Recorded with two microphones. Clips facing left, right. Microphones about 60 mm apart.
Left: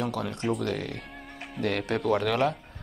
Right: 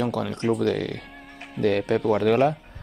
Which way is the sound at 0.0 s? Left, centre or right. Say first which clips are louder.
Right 5 dB; right.